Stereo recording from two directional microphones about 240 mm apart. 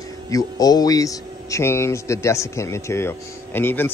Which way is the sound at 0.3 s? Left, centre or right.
Centre.